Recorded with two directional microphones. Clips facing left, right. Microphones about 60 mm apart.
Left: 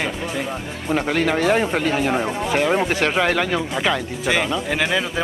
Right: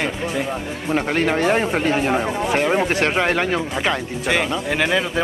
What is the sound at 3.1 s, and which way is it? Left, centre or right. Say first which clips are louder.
Speech: even; centre.